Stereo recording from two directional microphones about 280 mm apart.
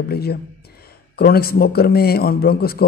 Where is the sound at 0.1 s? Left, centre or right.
Left.